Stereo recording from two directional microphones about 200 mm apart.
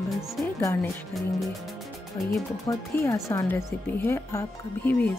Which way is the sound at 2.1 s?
15° left (ahead or behind).